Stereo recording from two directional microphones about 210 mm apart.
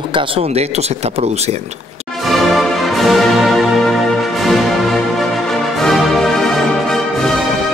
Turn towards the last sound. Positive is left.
turn(degrees=0)  # may be behind; listen again after turning